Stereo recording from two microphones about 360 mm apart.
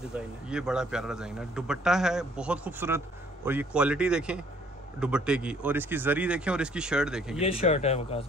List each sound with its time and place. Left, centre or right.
0.1 s speech: centre
7.3 s speech: centre